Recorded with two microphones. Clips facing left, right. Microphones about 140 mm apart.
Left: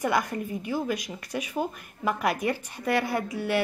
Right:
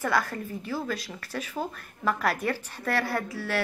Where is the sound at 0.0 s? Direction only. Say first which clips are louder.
Left 1 dB; 15° left (ahead or behind).